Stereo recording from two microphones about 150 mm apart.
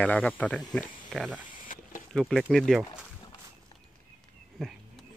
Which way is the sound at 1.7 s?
60° left (ahead or behind).